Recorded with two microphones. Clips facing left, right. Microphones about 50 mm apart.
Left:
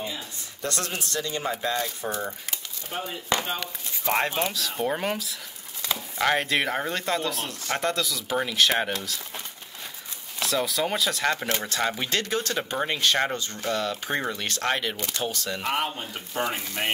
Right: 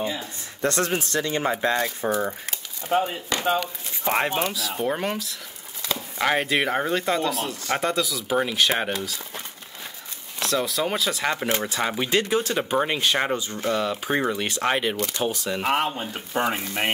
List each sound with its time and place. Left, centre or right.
0.0 s speech: right
2.9 s speech: right
3.5 s speech: centre
4.4 s speech: centre
10.4 s speech: centre
15.6 s speech: right